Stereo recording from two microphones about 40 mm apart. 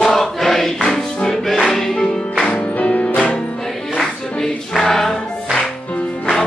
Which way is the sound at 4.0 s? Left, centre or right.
Centre.